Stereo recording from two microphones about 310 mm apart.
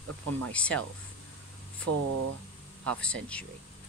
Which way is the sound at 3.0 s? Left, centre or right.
Centre.